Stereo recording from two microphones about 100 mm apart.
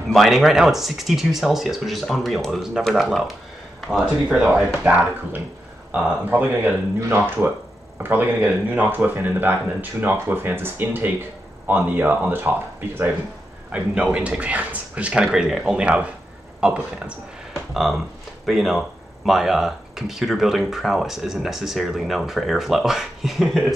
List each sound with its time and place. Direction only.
0.1 s speech: centre (ahead or behind)
17.7 s speech: centre (ahead or behind)